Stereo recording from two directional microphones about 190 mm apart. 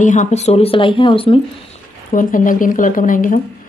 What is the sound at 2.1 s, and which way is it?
A woman's voice, 45° left (ahead or behind).